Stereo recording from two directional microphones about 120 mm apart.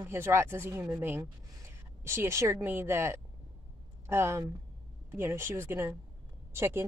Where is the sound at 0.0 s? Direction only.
20° right (ahead or behind).